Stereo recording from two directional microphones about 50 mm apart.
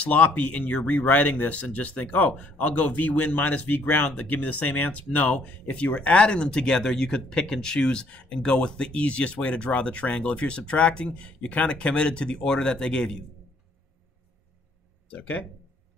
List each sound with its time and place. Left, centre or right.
0.0 s speech: left
15.0 s speech: left